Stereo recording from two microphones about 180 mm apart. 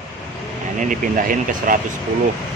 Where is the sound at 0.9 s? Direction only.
50° right (ahead or behind).